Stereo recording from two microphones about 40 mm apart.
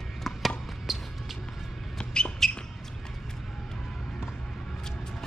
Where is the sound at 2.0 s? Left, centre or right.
Left.